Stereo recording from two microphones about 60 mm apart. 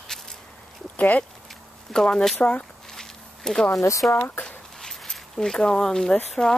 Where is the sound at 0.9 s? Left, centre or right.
Left.